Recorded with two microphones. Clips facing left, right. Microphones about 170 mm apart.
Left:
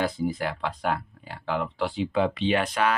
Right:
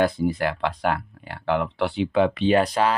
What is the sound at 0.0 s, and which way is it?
Speech, 65° right (ahead or behind).